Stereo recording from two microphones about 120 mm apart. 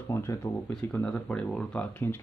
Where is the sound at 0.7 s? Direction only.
10° left (ahead or behind).